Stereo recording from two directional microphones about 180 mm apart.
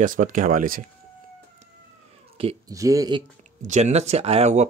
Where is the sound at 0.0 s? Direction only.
50° right (ahead or behind).